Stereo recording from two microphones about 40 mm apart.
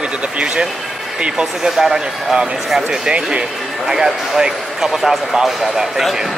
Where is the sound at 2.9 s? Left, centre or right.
Right.